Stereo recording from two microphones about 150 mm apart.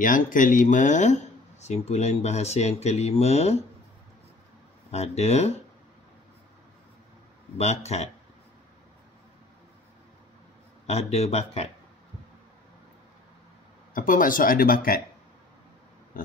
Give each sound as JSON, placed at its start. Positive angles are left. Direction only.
{"t": 0.0, "sound": "speech", "side_deg": 65}
{"t": 4.9, "sound": "speech", "side_deg": 45}
{"t": 7.5, "sound": "speech", "side_deg": 45}
{"t": 10.9, "sound": "speech", "side_deg": 45}
{"t": 13.9, "sound": "speech", "side_deg": 65}